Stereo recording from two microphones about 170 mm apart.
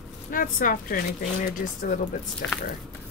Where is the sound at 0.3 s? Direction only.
55° left (ahead or behind).